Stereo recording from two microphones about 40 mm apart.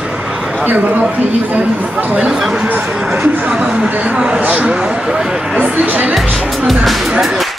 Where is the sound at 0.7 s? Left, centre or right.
Right.